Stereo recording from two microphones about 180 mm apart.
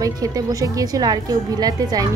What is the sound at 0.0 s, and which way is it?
A woman's voice, 20° right (ahead or behind).